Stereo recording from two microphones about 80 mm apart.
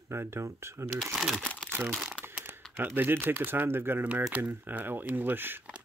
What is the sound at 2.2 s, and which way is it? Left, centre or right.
Crumpling, right.